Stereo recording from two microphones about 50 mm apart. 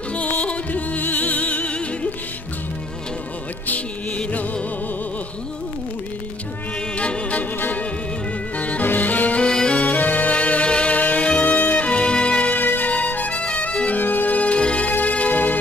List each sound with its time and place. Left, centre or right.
0.3 s music: left
4.2 s music: left
7.0 s music: left
7.5 s music: left
8.5 s music: left
9.4 s music: centre
9.8 s music: left
12.5 s music: left
13.9 s music: left